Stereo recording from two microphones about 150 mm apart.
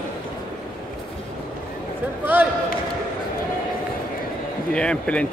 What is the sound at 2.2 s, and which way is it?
Basketball bounce, 10° right (ahead or behind).